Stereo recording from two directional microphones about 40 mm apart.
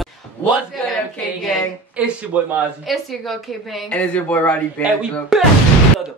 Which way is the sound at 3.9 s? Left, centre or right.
Left.